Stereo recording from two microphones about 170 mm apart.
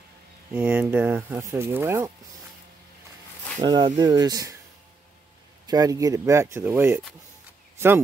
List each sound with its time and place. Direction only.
0.5 s speech: 10° right (ahead or behind)
3.6 s speech: 25° right (ahead or behind)
5.7 s speech: 20° right (ahead or behind)